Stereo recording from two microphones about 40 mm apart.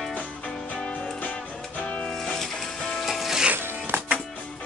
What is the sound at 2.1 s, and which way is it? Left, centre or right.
Music, centre.